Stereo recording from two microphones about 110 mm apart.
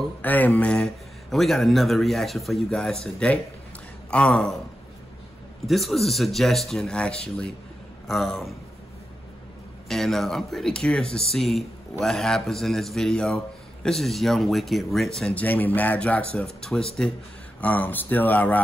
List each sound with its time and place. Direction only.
0.2 s speech: 15° left (ahead or behind)
5.7 s speech: centre (ahead or behind)
9.8 s speech: centre (ahead or behind)
15.4 s speech: 15° left (ahead or behind)
17.6 s speech: 15° left (ahead or behind)